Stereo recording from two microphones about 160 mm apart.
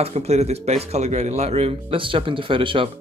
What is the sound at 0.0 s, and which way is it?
Speech, 40° right (ahead or behind).